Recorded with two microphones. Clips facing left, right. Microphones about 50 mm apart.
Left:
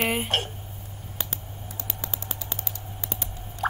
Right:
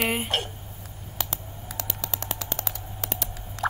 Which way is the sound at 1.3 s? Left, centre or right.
Right.